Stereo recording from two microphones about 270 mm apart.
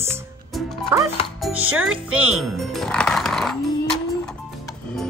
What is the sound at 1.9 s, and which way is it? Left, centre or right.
Speech, right.